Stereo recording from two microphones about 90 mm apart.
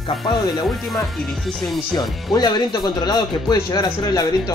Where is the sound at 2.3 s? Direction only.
50° left (ahead or behind).